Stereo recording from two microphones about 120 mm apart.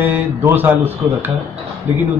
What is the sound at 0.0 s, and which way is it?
A man's voice, 15° right (ahead or behind).